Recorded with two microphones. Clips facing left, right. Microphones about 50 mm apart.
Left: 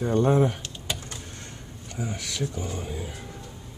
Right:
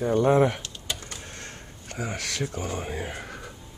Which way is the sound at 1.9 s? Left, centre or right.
Right.